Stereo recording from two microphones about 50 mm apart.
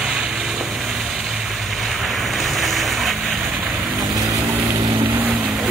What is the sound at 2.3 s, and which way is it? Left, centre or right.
Vehicle, centre.